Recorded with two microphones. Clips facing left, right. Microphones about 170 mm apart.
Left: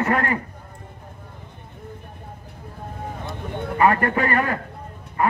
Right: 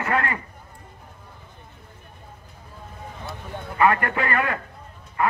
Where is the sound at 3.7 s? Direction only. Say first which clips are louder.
Left 2 dB; 35° left (ahead or behind).